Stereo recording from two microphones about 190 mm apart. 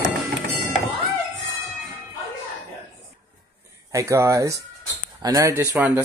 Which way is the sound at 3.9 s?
15° right (ahead or behind).